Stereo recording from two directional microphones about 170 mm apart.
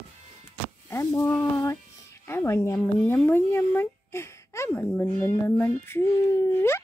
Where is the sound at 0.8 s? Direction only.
15° left (ahead or behind).